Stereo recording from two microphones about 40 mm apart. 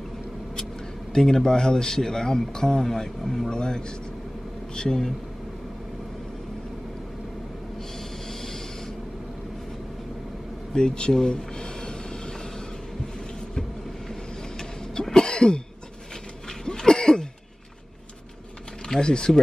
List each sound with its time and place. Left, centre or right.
1.1 s speech: centre
8.3 s a sound: centre
10.7 s music: centre
14.6 s throat clearing: centre
16.4 s a sound: centre
18.9 s speech: centre